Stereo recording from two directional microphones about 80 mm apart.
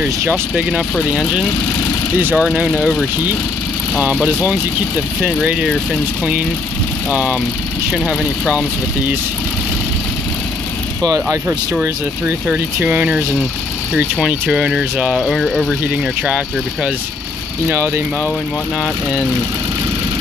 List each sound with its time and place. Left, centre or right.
0.3 s speech: centre
2.3 s speech: centre
5.2 s speech: centre
7.1 s speech: centre
7.9 s speech: centre
8.5 s speech: centre
12.4 s speech: right
14.2 s speech: centre
15.2 s speech: centre
16.3 s speech: centre
17.6 s speech: right